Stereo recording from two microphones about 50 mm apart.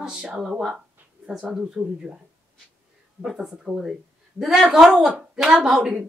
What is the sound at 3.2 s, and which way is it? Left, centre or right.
A man's voice, centre.